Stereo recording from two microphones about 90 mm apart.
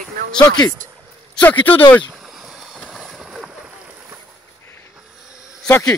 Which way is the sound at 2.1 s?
5° right (ahead or behind).